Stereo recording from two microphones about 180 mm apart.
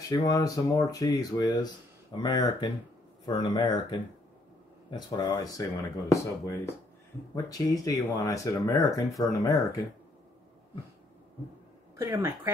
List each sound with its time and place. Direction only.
0.1 s speech: 20° left (ahead or behind)
12.0 s speech: 15° right (ahead or behind)